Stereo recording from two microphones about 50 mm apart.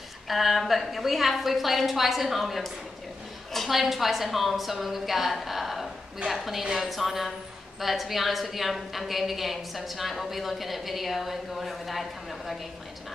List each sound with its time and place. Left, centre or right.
0.3 s a woman's voice: centre